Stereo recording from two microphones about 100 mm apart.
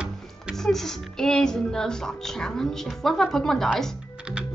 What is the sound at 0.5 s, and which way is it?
Speech, 5° left (ahead or behind).